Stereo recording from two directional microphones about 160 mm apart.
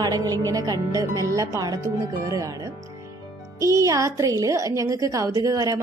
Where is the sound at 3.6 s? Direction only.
20° right (ahead or behind).